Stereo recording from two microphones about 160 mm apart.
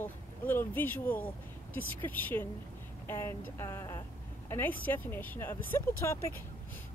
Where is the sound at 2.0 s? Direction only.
10° left (ahead or behind).